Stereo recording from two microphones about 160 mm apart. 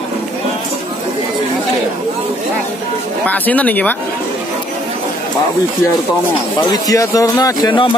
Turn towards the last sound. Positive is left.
turn(degrees=30)  # may be behind; listen again after turning